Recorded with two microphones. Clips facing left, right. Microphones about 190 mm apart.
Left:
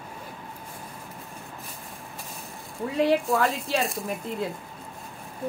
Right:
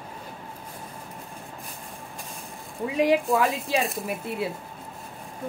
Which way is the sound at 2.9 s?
15° right (ahead or behind).